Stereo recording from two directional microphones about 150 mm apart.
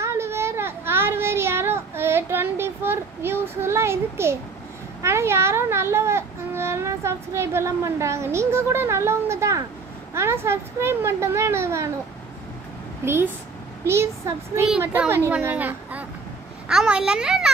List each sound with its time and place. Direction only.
0.0 s a sound: 20° right (ahead or behind)
5.0 s speech: 15° right (ahead or behind)
13.0 s a child's voice: 15° right (ahead or behind)